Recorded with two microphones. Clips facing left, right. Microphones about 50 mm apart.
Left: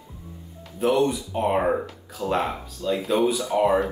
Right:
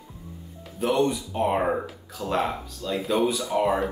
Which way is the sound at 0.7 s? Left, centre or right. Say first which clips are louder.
Left 2 dB; centre.